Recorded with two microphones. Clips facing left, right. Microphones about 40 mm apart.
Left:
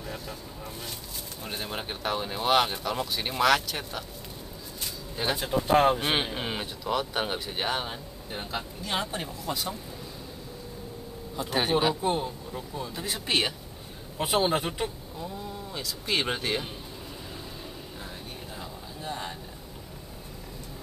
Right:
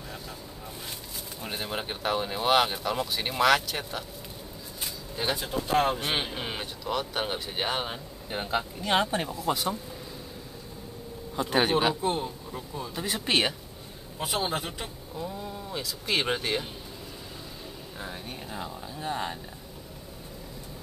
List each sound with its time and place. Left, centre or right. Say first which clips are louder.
1.4 s speech: right 2 dB; centre
5.1 s speech: left 1 dB; centre
5.5 s speech: left 5 dB; centre
8.3 s speech: right 5 dB; centre
11.3 s speech: right 3 dB; centre
11.7 s speech: even; centre
14.1 s a man's voice: left 4 dB; centre
15.1 s speech: right 1 dB; centre
18.0 s speech: right 6 dB; centre